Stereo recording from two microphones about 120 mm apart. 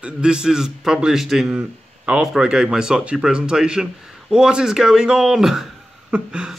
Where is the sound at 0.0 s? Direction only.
5° right (ahead or behind).